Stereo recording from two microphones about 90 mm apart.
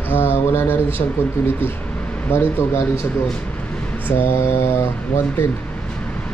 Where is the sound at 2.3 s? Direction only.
25° left (ahead or behind).